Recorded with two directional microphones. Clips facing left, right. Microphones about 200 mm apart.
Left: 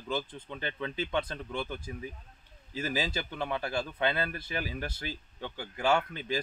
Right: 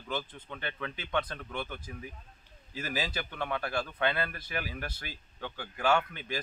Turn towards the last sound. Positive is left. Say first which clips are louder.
# left 1 dB
turn(degrees=25)  # may be behind; listen again after turning